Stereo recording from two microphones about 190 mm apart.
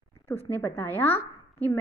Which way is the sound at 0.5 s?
15° left (ahead or behind).